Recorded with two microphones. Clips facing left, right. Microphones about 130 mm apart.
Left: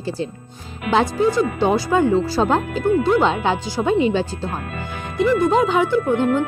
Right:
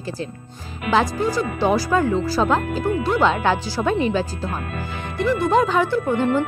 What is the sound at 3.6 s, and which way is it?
Speech, 20° left (ahead or behind).